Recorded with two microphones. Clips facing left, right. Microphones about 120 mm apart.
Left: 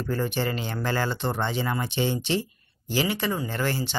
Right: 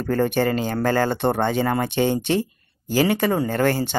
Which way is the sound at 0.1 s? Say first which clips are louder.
Right 8 dB; 50° right (ahead or behind).